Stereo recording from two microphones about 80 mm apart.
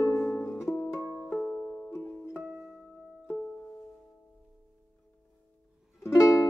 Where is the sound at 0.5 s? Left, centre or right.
Left.